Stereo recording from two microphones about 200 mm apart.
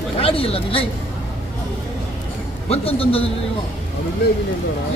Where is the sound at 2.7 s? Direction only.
30° left (ahead or behind).